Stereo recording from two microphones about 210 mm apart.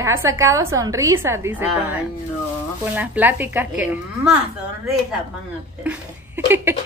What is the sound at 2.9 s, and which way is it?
A woman's voice, 5° right (ahead or behind).